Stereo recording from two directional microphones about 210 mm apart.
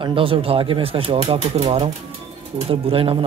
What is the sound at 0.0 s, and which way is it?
Speech, 25° right (ahead or behind).